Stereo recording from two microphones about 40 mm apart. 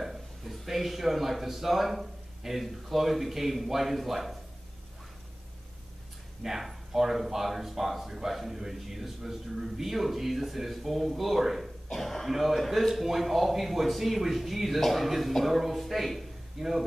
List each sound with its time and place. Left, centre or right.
0.0 s speech: centre
6.4 s speech: centre
11.9 s speech: centre